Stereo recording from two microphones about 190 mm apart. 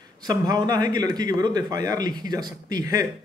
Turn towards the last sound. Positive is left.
turn(degrees=-20)  # may be behind; listen again after turning